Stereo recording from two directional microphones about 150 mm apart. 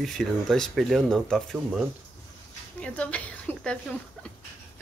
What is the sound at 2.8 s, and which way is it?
A woman's voice, 10° left (ahead or behind).